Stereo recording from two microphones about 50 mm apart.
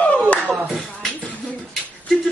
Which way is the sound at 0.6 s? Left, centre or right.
Centre.